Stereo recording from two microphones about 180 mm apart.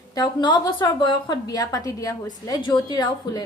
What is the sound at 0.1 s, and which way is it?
A woman's voice, 25° left (ahead or behind).